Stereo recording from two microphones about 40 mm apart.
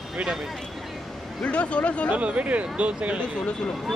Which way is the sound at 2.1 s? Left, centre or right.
Right.